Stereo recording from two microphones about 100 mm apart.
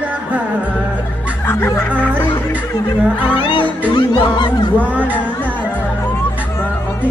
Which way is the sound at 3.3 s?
60° left (ahead or behind).